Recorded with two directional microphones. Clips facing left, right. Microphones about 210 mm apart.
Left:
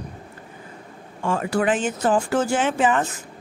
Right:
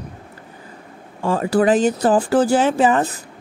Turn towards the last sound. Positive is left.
turn(degrees=-35)  # may be behind; listen again after turning